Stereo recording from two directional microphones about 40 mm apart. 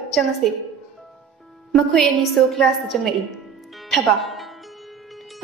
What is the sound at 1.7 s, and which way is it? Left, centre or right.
A woman's voice, centre.